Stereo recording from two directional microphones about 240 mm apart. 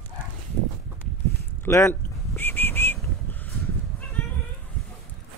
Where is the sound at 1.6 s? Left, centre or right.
Centre.